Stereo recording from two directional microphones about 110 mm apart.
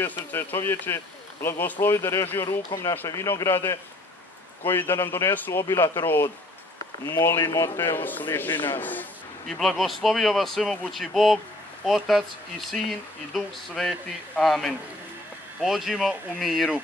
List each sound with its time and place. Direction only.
0.3 s speech: 20° left (ahead or behind)
9.5 s speech: centre (ahead or behind)